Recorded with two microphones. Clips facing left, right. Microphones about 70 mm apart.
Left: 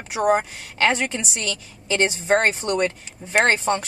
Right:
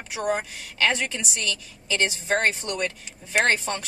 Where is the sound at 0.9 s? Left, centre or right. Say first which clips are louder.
Left 4 dB; left.